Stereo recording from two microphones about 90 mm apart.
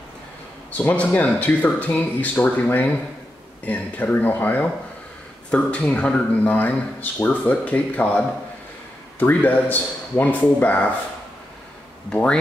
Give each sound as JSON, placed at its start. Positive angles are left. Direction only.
{"t": 0.7, "sound": "speech", "side_deg": 15}
{"t": 9.2, "sound": "speech", "side_deg": 20}
{"t": 12.1, "sound": "speech", "side_deg": 10}